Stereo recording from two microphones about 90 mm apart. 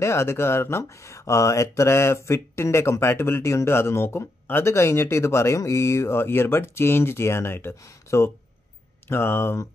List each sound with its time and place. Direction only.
0.0 s speech: 30° left (ahead or behind)